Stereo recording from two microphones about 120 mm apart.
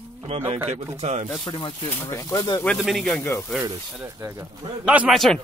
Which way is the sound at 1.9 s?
20° left (ahead or behind).